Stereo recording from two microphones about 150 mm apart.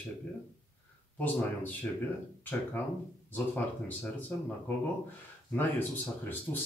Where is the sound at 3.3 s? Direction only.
10° left (ahead or behind).